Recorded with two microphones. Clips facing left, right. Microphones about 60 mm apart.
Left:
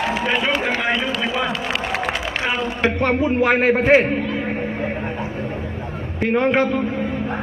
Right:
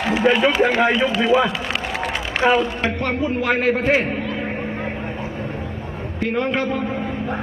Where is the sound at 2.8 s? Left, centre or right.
Left.